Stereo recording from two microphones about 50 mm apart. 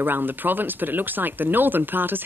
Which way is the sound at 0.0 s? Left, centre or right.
Right.